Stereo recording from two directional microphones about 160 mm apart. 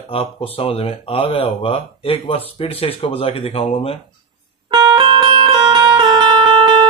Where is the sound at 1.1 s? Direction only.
40° left (ahead or behind).